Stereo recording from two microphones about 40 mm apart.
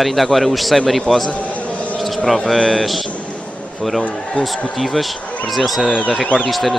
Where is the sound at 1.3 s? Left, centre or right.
Left.